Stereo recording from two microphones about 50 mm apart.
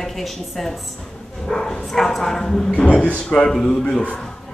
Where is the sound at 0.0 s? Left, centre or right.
Centre.